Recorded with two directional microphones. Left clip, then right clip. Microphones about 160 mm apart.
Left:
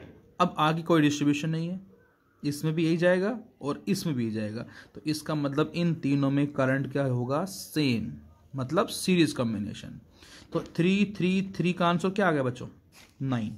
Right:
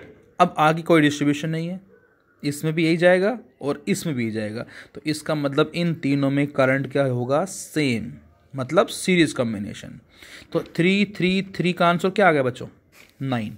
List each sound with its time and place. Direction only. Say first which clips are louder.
0.4 s speech: right 8 dB; 20° right (ahead or behind)